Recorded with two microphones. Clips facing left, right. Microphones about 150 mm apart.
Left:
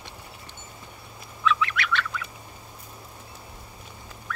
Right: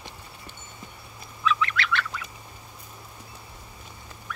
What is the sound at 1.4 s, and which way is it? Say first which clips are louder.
Duck: left 1 dB; 5° right (ahead or behind).